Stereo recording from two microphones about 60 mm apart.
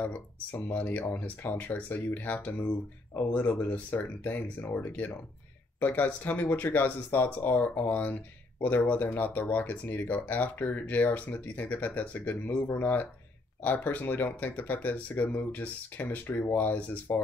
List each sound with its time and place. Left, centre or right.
0.0 s speech: left